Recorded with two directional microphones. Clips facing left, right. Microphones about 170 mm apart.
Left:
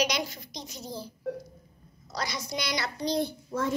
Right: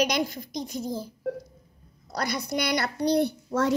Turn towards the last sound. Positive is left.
turn(degrees=-70)  # may be behind; listen again after turning